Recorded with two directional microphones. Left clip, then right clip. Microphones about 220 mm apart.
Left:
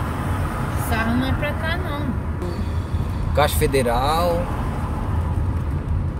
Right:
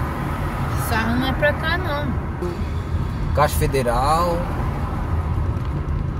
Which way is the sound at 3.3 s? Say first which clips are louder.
Left 1 dB; 20° left (ahead or behind).